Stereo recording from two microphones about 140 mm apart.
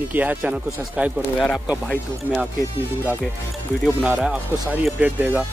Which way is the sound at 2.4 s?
10° right (ahead or behind).